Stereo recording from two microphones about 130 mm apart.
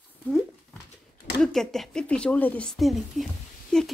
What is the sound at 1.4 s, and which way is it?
Speech, 5° left (ahead or behind).